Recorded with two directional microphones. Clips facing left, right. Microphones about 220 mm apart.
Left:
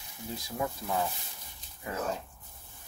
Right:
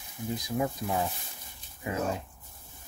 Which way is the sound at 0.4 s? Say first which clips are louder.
Right 3 dB; 20° right (ahead or behind).